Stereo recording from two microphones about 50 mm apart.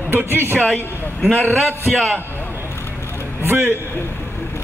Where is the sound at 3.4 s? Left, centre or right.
Right.